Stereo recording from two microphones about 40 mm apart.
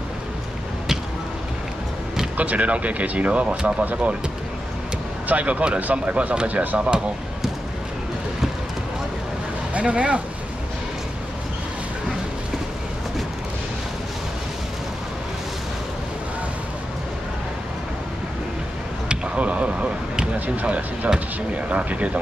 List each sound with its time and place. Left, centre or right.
2.3 s speech: right
5.3 s speech: right
9.8 s speech: right
19.0 s vehicle: right
20.6 s speech: right